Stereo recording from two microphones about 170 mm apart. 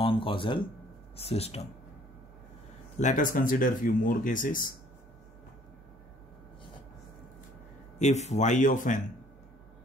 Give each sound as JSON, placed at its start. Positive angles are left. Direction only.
{"t": 0.0, "sound": "speech", "side_deg": 30}
{"t": 3.0, "sound": "speech", "side_deg": 50}
{"t": 8.0, "sound": "speech", "side_deg": 40}